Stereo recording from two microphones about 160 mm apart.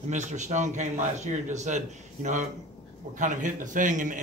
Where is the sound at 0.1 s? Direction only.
50° right (ahead or behind).